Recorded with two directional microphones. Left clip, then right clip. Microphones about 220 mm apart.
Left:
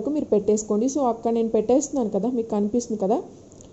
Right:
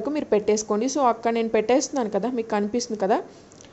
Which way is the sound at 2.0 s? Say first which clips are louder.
Even; 25° right (ahead or behind).